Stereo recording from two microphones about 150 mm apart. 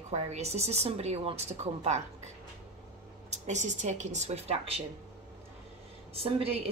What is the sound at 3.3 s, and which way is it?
Speech, 50° right (ahead or behind).